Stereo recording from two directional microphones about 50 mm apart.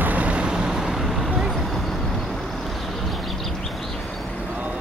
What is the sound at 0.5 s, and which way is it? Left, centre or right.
Vehicle, centre.